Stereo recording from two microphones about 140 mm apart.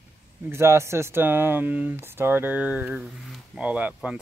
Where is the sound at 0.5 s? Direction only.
20° right (ahead or behind).